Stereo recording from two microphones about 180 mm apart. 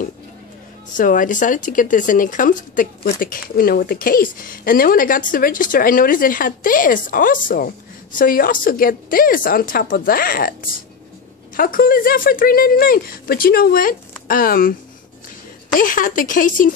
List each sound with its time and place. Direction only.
0.9 s speech: 50° left (ahead or behind)
15.8 s speech: 50° left (ahead or behind)